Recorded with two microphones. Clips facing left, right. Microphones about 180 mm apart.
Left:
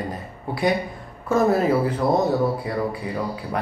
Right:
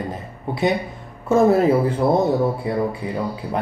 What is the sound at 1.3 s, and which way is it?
Speech, 25° right (ahead or behind).